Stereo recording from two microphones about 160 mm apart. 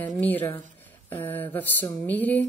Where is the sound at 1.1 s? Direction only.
15° left (ahead or behind).